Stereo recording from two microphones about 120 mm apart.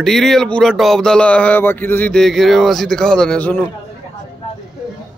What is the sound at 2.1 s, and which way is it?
Speech, centre (ahead or behind).